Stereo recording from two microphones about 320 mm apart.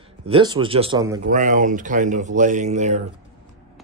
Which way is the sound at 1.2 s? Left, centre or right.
Right.